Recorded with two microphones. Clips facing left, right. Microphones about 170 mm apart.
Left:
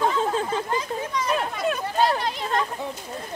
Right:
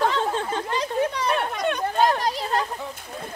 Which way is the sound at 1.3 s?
Centre (ahead or behind).